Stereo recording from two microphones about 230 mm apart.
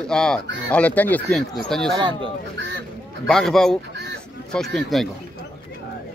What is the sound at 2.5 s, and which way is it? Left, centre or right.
Honk, right.